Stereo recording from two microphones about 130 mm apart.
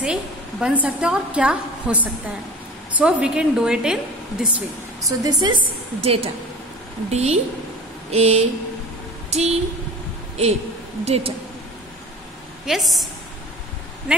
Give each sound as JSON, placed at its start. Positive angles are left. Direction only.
{"t": 0.0, "sound": "a woman's voice", "side_deg": -5}
{"t": 5.0, "sound": "a woman's voice", "side_deg": -30}
{"t": 11.1, "sound": "a woman's voice", "side_deg": -50}
{"t": 12.6, "sound": "a woman's voice", "side_deg": 0}